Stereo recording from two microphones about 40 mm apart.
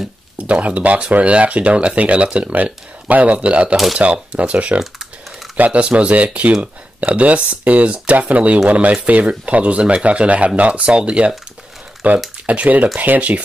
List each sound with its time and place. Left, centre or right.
0.4 s speech: right
2.4 s speech: right
3.4 s speech: right
3.7 s speech: centre
4.0 s speech: right
12.0 s speech: right